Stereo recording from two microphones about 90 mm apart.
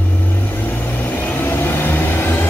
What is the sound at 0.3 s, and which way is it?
Vehicle, 20° left (ahead or behind).